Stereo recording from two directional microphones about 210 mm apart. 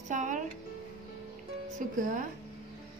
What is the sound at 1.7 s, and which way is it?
Speech, 40° right (ahead or behind).